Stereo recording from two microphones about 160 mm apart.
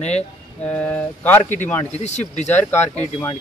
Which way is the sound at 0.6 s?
10° left (ahead or behind).